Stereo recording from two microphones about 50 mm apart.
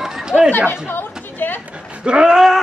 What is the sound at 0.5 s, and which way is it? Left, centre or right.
Speech, left.